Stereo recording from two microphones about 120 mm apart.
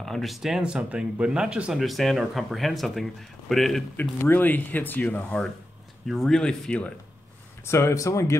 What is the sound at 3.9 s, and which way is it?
Speech, 20° left (ahead or behind).